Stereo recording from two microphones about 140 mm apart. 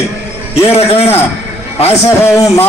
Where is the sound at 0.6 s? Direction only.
45° left (ahead or behind).